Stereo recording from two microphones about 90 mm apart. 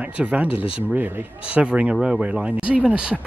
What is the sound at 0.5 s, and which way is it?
Speech, 90° left.